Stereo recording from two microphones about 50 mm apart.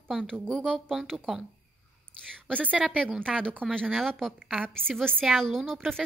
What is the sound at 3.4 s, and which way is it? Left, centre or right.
Speech, left.